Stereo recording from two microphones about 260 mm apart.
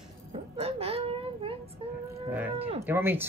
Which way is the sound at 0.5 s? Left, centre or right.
Right.